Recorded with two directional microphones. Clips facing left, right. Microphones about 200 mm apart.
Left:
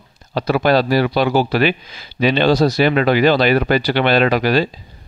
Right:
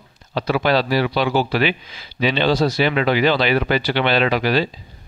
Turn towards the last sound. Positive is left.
turn(degrees=45)  # may be behind; listen again after turning